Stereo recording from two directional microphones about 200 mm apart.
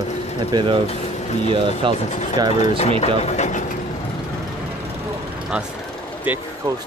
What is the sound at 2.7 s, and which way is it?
Speech, 30° left (ahead or behind).